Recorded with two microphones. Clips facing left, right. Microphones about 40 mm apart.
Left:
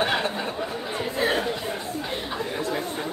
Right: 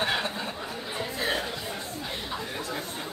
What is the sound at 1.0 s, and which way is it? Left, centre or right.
Chatter, left.